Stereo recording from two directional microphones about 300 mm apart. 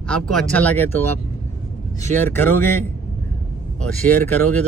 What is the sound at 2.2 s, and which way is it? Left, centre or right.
Speech, centre.